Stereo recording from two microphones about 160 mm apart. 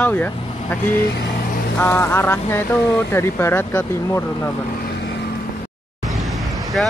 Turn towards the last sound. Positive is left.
turn(degrees=0)  # may be behind; listen again after turning